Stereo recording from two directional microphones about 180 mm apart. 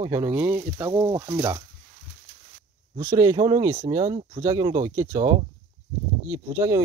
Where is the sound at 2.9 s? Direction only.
20° right (ahead or behind).